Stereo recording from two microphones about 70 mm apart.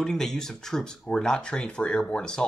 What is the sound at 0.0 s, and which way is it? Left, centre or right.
Speech, centre.